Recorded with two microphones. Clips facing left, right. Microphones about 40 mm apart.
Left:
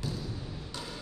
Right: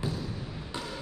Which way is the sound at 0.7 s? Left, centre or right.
Right.